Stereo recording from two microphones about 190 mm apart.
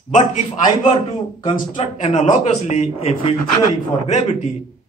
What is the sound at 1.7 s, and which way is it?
A man's voice, 35° left (ahead or behind).